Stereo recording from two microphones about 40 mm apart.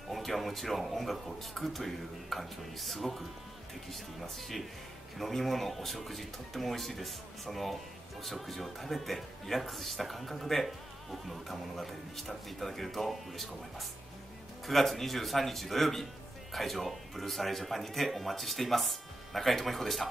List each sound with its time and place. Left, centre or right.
0.1 s speech: centre